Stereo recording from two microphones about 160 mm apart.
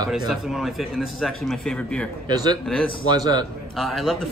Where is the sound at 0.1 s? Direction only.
Centre (ahead or behind).